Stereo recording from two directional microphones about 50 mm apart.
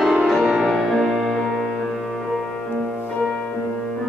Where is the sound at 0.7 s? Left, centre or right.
Centre.